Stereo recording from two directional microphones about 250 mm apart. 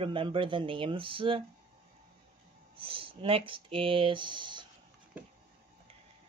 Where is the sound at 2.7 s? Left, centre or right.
Right.